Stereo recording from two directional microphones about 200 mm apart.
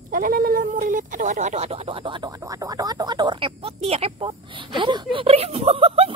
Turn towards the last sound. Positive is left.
turn(degrees=-30)  # may be behind; listen again after turning